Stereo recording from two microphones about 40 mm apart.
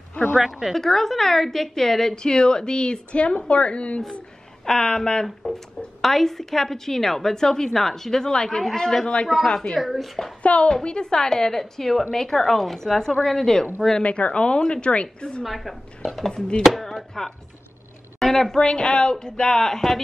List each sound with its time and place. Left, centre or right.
0.4 s a woman's voice: centre
0.7 s a woman's voice: centre
5.2 s a woman's voice: centre; by 9.3 s left
9.6 s speech: centre
10.4 s a woman's voice: left; by 14.0 s centre
14.0 s a woman's voice: left
15.4 s speech: centre
16.3 s a woman's voice: centre
16.6 s chopping: centre
18.2 s a woman's voice: centre